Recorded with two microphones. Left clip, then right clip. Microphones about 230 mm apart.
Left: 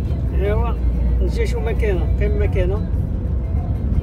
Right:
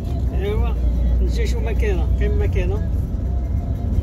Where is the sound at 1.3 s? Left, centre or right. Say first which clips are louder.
Left 4 dB; left.